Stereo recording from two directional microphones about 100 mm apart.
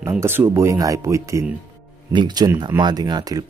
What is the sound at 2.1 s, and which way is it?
Speech, 50° right (ahead or behind).